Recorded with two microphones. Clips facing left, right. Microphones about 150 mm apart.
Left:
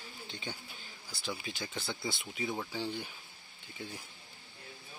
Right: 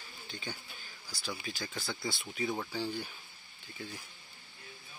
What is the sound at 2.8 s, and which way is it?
Speech, 20° left (ahead or behind).